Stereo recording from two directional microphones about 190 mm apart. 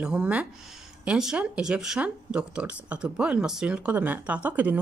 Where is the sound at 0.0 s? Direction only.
5° right (ahead or behind).